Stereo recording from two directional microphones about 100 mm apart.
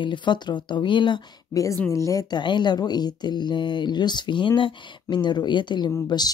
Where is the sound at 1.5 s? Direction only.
35° left (ahead or behind).